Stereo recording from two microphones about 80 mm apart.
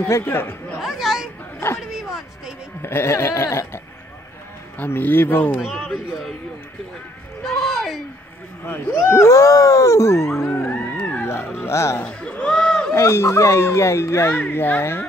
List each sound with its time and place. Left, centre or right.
0.2 s speech: left
0.7 s chatter: centre
1.8 s a sound: centre
2.8 s speech: left
4.7 s speech: left
7.4 s speech: centre
9.0 s speech: left
10.7 s music: centre
11.2 s speech: left
12.0 s a sound: centre
12.9 s speech: left